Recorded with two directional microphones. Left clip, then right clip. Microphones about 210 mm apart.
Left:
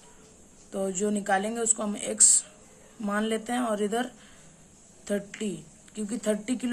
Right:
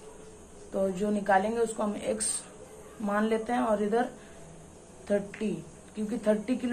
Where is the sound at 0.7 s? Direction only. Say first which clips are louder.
Even; 35° left (ahead or behind).